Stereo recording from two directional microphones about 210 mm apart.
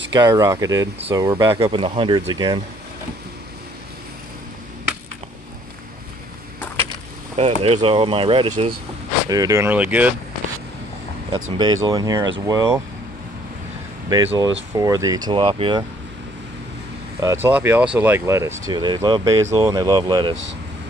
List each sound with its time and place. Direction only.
0.1 s speech: 15° right (ahead or behind)
7.3 s speech: 30° right (ahead or behind); by 10.1 s 5° right (ahead or behind)
11.5 s speech: 20° right (ahead or behind)
14.0 s speech: 15° right (ahead or behind)
17.2 s speech: 10° right (ahead or behind)